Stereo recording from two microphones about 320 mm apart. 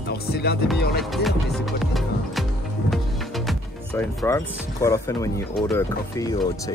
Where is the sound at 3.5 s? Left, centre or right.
Centre.